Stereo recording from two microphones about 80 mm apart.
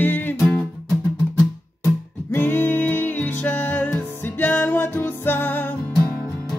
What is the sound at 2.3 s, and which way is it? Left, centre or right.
Music, left.